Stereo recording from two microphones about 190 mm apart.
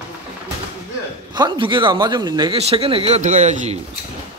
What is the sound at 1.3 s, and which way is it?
A man's voice, 25° right (ahead or behind).